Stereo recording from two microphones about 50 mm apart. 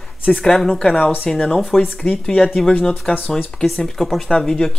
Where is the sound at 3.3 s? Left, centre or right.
Centre.